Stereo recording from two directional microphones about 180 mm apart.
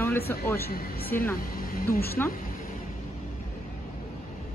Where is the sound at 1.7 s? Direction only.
55° left (ahead or behind).